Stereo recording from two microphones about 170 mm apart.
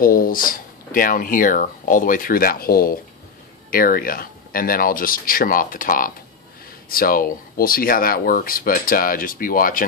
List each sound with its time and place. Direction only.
0.0 s speech: 55° left (ahead or behind)